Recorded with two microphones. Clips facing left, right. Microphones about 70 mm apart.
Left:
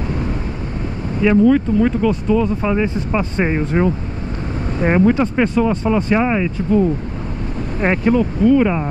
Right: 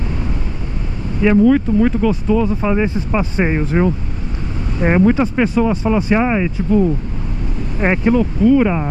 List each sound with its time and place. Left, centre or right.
1.4 s speech: centre
7.8 s speech: centre
8.1 s speech: centre